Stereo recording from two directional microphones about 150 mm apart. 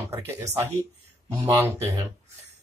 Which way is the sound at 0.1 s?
20° right (ahead or behind).